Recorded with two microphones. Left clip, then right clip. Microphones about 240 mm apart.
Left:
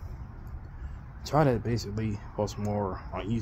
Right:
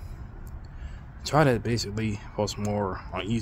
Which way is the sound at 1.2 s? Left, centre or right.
Centre.